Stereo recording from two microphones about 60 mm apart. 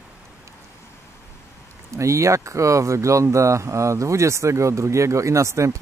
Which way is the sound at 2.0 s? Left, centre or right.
Right.